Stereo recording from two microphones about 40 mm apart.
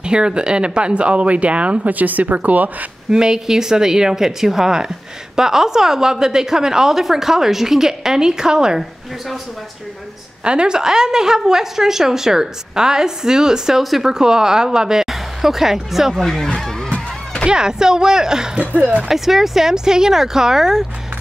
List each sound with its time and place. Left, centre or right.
0.0 s speech: right
3.1 s speech: centre
10.4 s speech: right; by 16.3 s centre
17.5 s speech: centre